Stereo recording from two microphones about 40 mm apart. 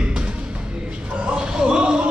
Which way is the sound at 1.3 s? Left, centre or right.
Centre.